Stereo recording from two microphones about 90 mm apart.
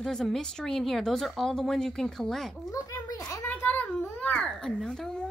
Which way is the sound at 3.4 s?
20° left (ahead or behind).